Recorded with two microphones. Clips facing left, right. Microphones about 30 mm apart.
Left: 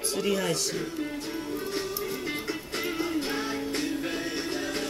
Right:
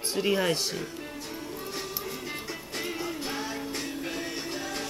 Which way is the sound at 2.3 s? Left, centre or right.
Centre.